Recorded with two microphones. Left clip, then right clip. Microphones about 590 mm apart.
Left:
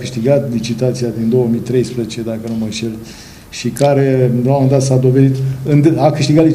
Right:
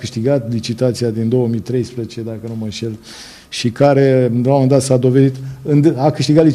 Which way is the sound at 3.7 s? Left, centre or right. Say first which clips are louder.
Right 1 dB; right.